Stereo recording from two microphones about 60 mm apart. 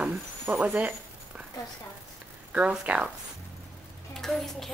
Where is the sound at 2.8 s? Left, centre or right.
Right.